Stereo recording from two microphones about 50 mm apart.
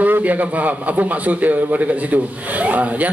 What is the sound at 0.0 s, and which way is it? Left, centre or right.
A man's voice, right.